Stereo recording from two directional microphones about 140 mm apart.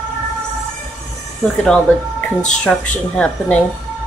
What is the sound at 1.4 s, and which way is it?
Speech, 5° left (ahead or behind).